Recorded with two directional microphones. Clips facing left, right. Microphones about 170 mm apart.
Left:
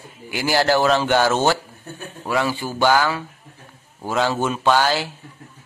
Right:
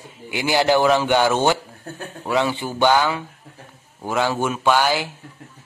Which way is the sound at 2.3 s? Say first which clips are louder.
Right 1 dB; 20° right (ahead or behind).